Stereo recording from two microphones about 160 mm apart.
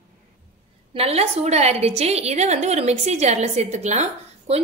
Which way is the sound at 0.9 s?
40° right (ahead or behind).